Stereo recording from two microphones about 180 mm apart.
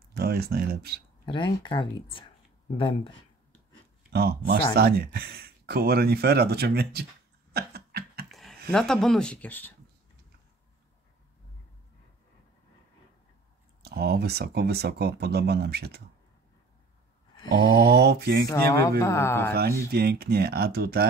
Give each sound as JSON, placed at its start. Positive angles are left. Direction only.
{"t": 0.1, "sound": "speech", "side_deg": -60}
{"t": 1.2, "sound": "speech", "side_deg": 25}
{"t": 4.1, "sound": "speech", "side_deg": -60}
{"t": 7.5, "sound": "a sound", "side_deg": -60}
{"t": 8.3, "sound": "a sound", "side_deg": 0}
{"t": 8.7, "sound": "speech", "side_deg": 5}
{"t": 13.8, "sound": "speech", "side_deg": -60}
{"t": 17.8, "sound": "speech", "side_deg": -65}
{"t": 18.5, "sound": "speech", "side_deg": 15}
{"t": 19.9, "sound": "speech", "side_deg": -60}